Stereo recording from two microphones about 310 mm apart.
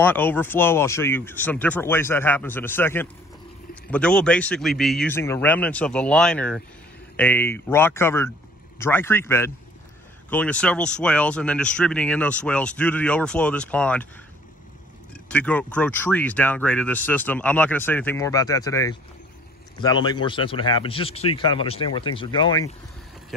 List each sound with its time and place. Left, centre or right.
0.0 s speech: centre
15.2 s speech: centre